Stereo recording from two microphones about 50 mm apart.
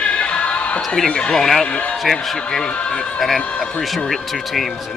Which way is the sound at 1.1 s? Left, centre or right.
Centre.